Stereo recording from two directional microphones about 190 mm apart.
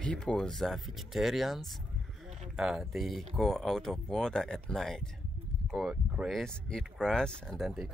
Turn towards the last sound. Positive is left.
turn(degrees=0)  # may be behind; listen again after turning